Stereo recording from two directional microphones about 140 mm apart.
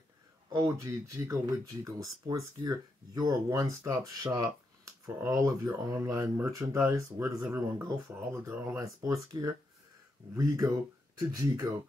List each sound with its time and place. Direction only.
0.7 s speech: 20° right (ahead or behind)